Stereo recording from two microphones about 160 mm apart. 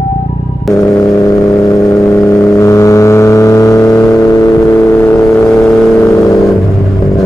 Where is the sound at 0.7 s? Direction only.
20° left (ahead or behind).